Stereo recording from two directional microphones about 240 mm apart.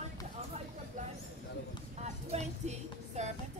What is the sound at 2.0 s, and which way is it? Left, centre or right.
Music, right.